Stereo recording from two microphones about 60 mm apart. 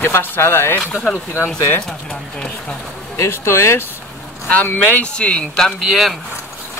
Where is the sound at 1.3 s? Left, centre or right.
Left.